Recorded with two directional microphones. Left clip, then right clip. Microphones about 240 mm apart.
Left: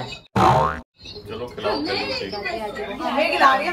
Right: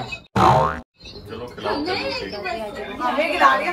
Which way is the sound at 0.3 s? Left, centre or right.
Centre.